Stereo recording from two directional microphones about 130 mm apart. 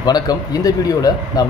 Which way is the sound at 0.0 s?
30° left (ahead or behind).